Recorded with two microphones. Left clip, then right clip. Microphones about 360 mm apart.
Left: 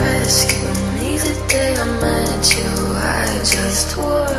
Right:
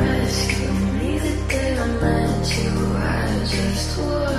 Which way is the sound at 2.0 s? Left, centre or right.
Left.